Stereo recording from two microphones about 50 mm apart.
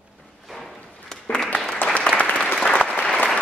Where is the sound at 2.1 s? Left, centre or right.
Left.